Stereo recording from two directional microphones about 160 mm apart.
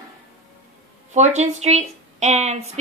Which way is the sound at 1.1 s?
45° right (ahead or behind).